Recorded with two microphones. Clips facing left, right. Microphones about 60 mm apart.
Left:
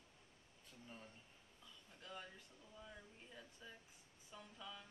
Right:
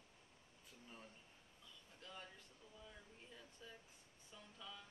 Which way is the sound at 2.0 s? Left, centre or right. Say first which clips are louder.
Left 2 dB; centre.